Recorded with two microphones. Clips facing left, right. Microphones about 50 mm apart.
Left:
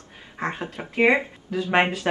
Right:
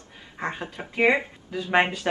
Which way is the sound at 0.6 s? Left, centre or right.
Centre.